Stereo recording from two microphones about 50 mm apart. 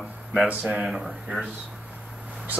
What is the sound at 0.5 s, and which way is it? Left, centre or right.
Speech, right.